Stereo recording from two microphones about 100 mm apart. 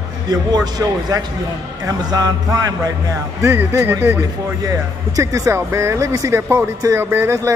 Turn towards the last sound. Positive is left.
turn(degrees=-25)  # may be behind; listen again after turning